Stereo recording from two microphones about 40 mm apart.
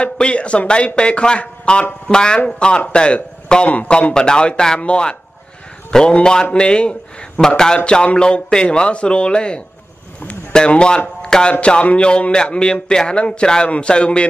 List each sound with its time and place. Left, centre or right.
0.0 s a man's voice: left
7.8 s speech: left
10.7 s speech: left